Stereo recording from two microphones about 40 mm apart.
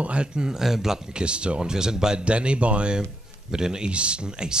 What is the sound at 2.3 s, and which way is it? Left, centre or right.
Speech, right.